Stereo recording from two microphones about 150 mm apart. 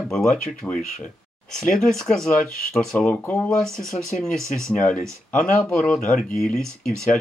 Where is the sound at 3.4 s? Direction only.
5° left (ahead or behind).